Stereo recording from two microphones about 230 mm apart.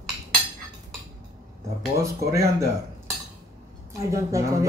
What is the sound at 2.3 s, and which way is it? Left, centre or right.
Speech, centre.